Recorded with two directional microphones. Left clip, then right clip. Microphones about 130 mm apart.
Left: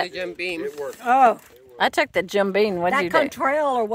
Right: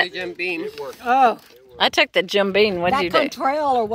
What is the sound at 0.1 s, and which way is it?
Speech, 5° right (ahead or behind).